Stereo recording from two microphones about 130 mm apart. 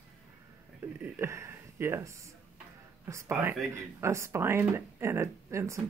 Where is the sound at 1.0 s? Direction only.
20° right (ahead or behind).